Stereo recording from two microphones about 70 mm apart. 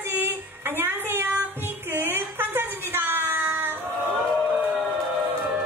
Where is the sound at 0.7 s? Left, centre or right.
Right.